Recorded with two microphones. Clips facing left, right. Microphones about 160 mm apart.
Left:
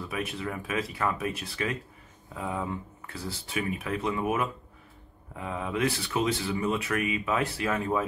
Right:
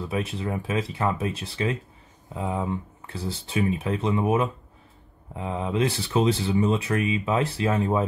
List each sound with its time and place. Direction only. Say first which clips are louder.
0.1 s speech: right 5 dB; 25° right (ahead or behind)